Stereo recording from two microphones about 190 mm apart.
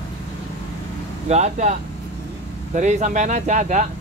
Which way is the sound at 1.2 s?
35° right (ahead or behind).